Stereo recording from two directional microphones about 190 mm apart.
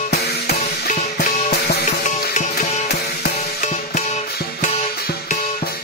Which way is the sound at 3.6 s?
35° left (ahead or behind).